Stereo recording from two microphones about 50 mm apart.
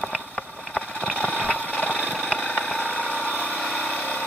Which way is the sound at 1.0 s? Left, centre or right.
Left.